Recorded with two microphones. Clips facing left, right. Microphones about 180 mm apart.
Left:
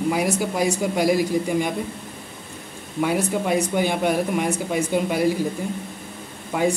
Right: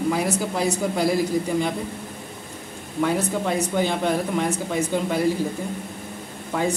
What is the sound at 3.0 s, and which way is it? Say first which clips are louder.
Speech: left 1 dB; 10° left (ahead or behind).